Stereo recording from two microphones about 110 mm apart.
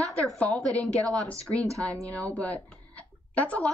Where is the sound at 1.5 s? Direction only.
30° right (ahead or behind).